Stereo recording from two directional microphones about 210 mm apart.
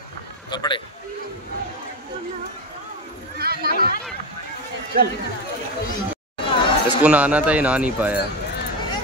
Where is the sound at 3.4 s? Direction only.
45° right (ahead or behind).